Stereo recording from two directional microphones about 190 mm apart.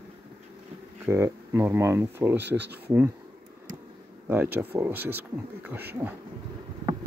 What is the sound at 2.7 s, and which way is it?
Speech, 10° right (ahead or behind).